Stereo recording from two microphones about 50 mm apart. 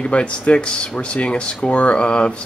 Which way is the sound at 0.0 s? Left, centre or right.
Left.